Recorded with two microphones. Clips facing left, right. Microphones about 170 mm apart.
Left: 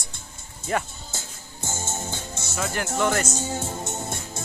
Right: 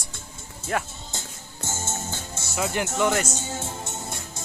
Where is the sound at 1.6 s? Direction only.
15° left (ahead or behind).